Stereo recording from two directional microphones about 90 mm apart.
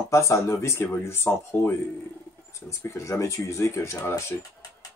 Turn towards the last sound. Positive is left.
turn(degrees=30)  # may be behind; listen again after turning